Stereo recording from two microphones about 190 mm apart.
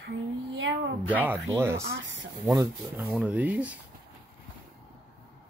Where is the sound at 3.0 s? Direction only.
Centre (ahead or behind).